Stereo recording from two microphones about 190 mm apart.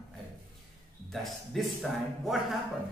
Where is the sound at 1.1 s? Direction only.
Centre (ahead or behind).